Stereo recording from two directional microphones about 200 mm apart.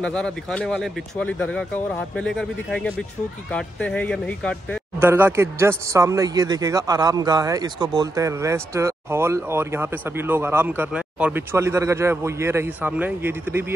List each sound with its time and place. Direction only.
0.0 s speech: 5° left (ahead or behind)
5.0 s a man's voice: 10° right (ahead or behind)